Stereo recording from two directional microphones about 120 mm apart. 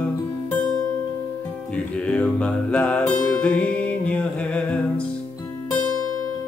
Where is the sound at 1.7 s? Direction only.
10° left (ahead or behind).